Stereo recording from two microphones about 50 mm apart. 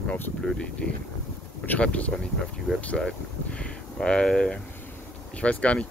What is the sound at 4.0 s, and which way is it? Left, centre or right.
Speech, centre.